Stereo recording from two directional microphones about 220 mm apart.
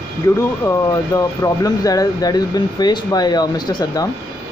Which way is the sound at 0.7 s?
15° left (ahead or behind).